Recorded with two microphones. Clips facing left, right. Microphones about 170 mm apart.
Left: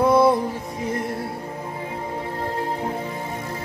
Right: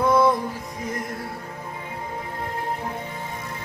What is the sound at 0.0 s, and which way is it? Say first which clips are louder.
Music: left 3 dB; 30° left (ahead or behind).